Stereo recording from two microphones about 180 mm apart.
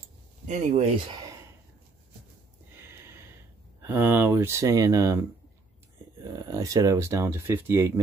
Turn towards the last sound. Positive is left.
turn(degrees=-15)  # may be behind; listen again after turning